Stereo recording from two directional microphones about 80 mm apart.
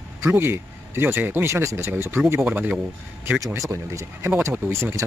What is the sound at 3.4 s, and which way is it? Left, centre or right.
Speech, right.